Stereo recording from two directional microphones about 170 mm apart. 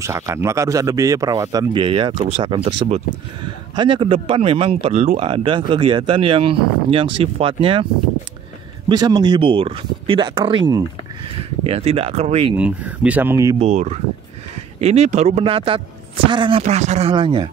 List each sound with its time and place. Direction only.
0.0 s speech: 15° right (ahead or behind)
2.1 s speech: 40° right (ahead or behind)
8.8 s speech: 25° right (ahead or behind)
12.5 s speech: 5° right (ahead or behind)
13.6 s speech: 40° right (ahead or behind)
17.1 s speech: 30° right (ahead or behind)